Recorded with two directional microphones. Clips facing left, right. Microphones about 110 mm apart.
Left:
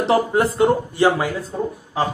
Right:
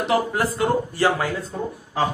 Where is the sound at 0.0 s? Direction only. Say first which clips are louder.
Left 4 dB; 30° left (ahead or behind).